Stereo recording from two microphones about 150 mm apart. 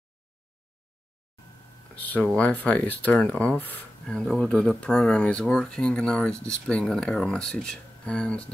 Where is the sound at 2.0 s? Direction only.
10° left (ahead or behind).